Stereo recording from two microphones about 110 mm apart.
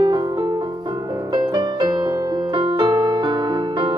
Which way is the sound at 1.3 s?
40° right (ahead or behind).